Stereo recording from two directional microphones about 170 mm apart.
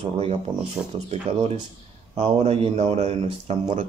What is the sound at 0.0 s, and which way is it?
Speech, 35° right (ahead or behind).